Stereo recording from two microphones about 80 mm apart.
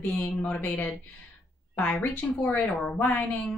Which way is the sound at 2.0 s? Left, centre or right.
Centre.